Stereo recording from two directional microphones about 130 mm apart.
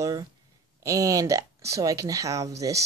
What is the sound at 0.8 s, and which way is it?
Speech, 25° right (ahead or behind).